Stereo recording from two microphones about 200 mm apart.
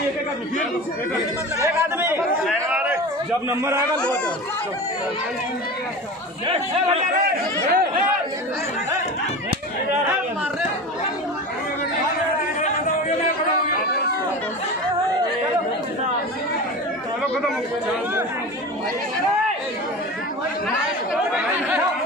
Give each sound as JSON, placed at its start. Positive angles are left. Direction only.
{"t": 1.6, "sound": "speech", "side_deg": -10}
{"t": 2.4, "sound": "a sound", "side_deg": -5}
{"t": 6.4, "sound": "speech", "side_deg": -30}
{"t": 7.1, "sound": "speech", "side_deg": -45}